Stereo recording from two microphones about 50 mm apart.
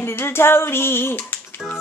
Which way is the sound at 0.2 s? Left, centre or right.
Left.